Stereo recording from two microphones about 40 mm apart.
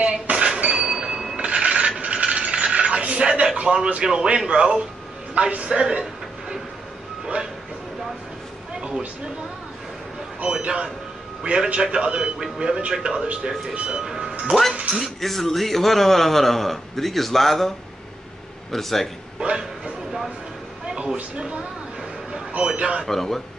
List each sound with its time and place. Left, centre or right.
0.0 s train: right
1.3 s filing: right
2.2 s a sound: right
3.6 s a man's voice: right
5.4 s a woman's voice: right
5.7 s a man's voice: right
10.4 s a man's voice: right
15.0 s a man's voice: centre
19.4 s speech: centre
20.8 s a sound: right
21.4 s a man's voice: right
23.0 s speech: centre